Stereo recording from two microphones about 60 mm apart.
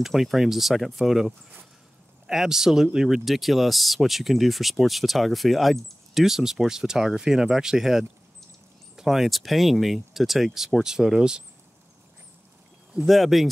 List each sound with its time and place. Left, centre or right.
0.0 s speech: centre
13.0 s speech: centre